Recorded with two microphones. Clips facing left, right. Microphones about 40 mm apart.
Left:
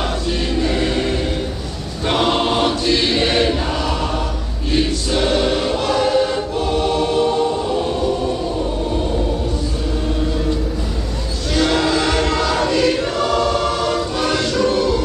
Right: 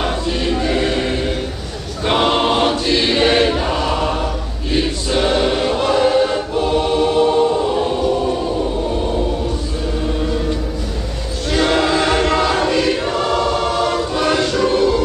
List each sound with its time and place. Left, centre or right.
0.3 s choir: centre
11.5 s choir: centre
14.1 s music: centre